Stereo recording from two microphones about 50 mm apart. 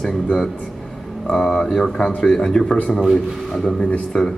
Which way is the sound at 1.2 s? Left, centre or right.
Centre.